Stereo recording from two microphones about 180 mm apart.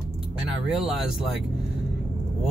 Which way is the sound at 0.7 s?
Centre (ahead or behind).